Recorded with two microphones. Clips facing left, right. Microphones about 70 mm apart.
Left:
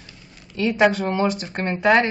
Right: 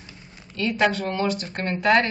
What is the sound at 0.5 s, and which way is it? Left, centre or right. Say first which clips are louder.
A woman's voice: left 4 dB; centre.